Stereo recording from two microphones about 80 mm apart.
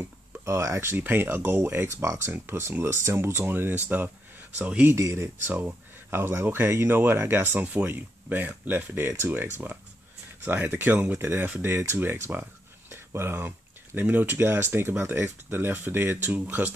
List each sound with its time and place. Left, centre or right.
0.0 s speech: right
4.8 s speech: right
5.5 s speech: right